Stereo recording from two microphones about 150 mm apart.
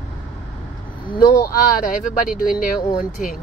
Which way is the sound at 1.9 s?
70° left (ahead or behind).